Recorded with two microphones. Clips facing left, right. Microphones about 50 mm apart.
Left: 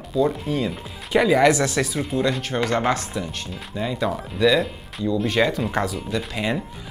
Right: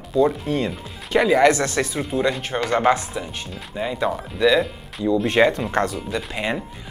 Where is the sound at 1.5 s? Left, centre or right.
Centre.